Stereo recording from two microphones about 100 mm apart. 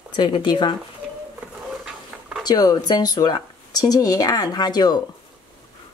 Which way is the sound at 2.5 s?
40° left (ahead or behind).